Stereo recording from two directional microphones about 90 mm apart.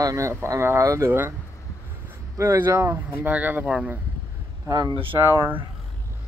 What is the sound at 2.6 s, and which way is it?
Speech, 25° right (ahead or behind).